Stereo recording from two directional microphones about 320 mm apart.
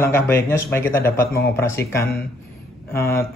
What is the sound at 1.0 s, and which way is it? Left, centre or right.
Speech, left.